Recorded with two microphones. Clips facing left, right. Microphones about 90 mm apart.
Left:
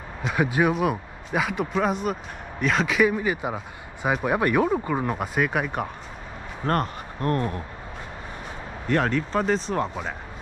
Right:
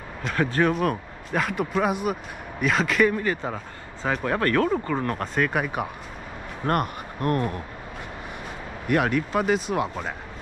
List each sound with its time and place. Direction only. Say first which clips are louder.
0.2 s a man's voice: even; 10° left (ahead or behind)
6.6 s speech: even; 15° right (ahead or behind)
7.2 s speech: right 1 dB; 30° left (ahead or behind)
8.8 s speech: right 1 dB; 10° right (ahead or behind)